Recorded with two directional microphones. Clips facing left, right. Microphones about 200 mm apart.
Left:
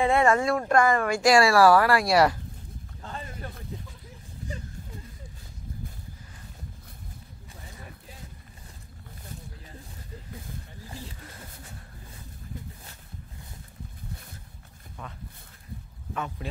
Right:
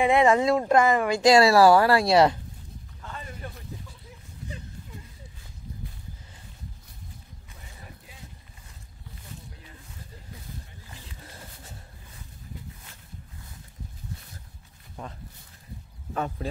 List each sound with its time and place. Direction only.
0.0 s speech: 15° right (ahead or behind)
16.1 s speech: 35° right (ahead or behind)